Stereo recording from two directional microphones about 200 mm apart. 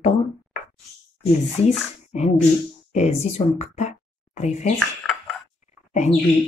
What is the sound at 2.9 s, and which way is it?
Speech, 35° left (ahead or behind).